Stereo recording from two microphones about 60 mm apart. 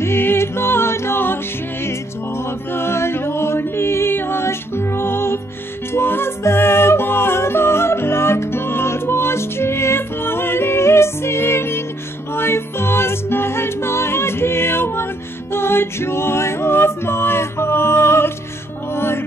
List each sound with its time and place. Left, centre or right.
0.0 s music: left